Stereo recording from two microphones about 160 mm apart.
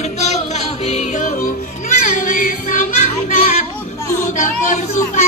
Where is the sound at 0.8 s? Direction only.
45° left (ahead or behind).